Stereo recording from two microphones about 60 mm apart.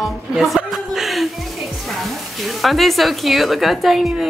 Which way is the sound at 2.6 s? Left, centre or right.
Centre.